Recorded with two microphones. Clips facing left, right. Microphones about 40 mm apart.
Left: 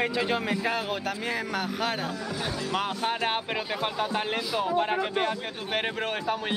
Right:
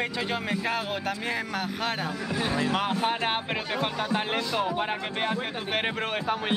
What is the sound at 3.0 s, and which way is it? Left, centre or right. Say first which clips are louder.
Speech: right 1 dB; centre.